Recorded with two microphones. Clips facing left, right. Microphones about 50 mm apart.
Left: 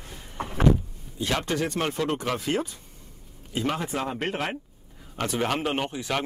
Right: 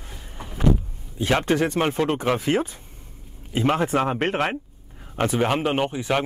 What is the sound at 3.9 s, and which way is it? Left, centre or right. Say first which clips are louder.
Speech: right 7 dB; right.